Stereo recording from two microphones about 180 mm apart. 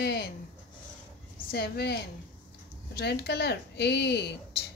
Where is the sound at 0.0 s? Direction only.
60° left (ahead or behind).